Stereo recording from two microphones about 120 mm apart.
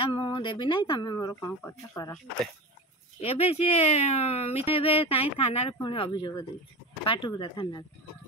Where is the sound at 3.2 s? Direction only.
55° left (ahead or behind).